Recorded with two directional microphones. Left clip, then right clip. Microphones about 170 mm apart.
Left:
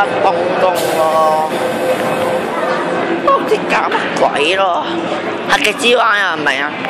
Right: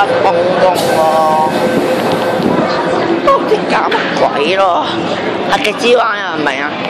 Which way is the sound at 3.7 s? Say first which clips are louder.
Right 2 dB; 5° left (ahead or behind).